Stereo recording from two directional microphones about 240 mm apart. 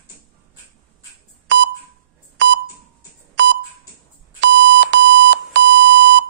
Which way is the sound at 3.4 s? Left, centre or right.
Right.